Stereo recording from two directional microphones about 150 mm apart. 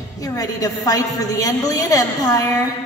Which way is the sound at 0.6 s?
25° left (ahead or behind).